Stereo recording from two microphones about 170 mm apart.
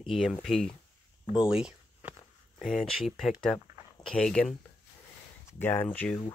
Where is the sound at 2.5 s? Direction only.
Centre (ahead or behind).